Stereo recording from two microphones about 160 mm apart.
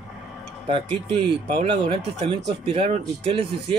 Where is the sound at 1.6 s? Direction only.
35° right (ahead or behind).